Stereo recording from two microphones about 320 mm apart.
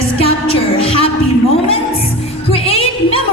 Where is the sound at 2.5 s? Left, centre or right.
Centre.